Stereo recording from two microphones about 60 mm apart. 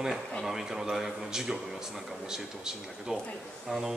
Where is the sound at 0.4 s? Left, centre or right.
Centre.